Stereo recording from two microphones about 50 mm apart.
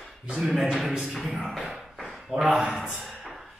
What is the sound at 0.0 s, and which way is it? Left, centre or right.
Speech, centre.